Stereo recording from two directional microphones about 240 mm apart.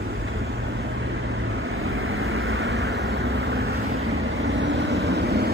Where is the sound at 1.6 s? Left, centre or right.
Right.